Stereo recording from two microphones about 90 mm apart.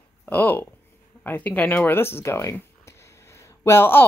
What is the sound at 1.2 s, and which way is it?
Speech, 20° left (ahead or behind).